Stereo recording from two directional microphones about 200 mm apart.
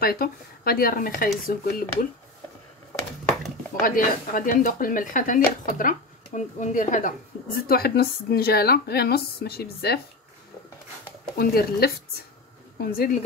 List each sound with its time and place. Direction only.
0.0 s a woman's voice: 50° left (ahead or behind)
3.8 s a woman's voice: 45° left (ahead or behind)
11.3 s a woman's voice: 50° left (ahead or behind)